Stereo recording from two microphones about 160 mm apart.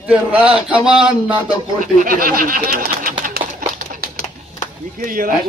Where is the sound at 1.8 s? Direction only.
60° right (ahead or behind).